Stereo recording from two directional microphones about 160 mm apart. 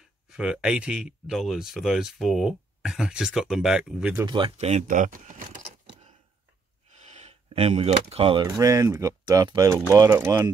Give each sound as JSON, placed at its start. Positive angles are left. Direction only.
{"t": 0.4, "sound": "speech", "side_deg": -5}
{"t": 4.3, "sound": "speech", "side_deg": -35}
{"t": 7.0, "sound": "speech", "side_deg": -45}
{"t": 8.5, "sound": "speech", "side_deg": -20}